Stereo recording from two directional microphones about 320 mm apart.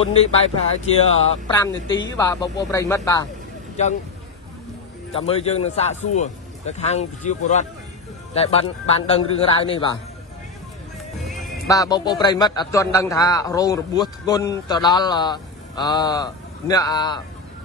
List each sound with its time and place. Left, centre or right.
0.0 s a man's voice: centre
5.1 s a man's voice: centre
11.2 s music: centre
11.7 s a man's voice: centre